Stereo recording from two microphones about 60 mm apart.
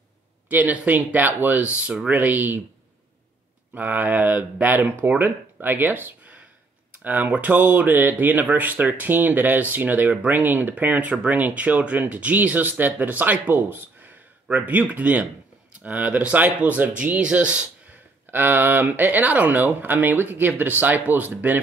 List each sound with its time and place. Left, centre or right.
0.5 s speech: right
1.6 s speech: centre
3.7 s speech: right
18.3 s speech: right